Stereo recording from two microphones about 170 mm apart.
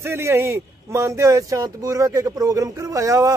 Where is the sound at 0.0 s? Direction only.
15° right (ahead or behind).